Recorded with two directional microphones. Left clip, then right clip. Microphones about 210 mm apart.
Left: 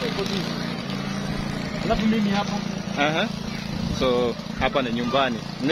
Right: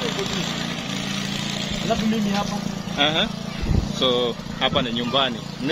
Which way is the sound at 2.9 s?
Centre (ahead or behind).